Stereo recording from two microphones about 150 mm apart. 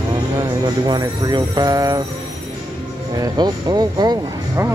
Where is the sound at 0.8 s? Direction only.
30° right (ahead or behind).